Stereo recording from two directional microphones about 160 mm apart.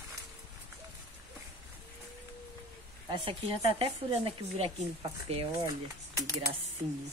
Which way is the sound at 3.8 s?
35° right (ahead or behind).